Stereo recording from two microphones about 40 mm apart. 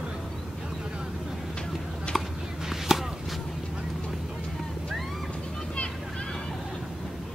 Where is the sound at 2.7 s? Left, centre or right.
Centre.